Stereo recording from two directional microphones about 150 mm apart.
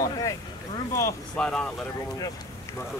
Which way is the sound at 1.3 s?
5° left (ahead or behind).